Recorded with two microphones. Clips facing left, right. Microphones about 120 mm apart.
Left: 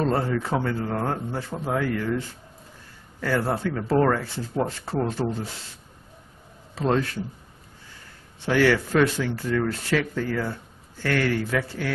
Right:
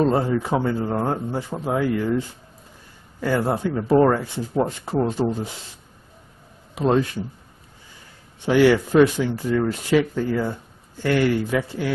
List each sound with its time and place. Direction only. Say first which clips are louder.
0.0 s speech: right 4 dB; 15° right (ahead or behind)
6.7 s speech: right 4 dB; 15° right (ahead or behind)
8.5 s speech: right 4 dB; 15° right (ahead or behind)